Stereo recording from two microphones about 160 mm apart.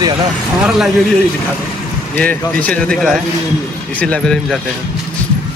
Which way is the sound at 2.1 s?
10° left (ahead or behind).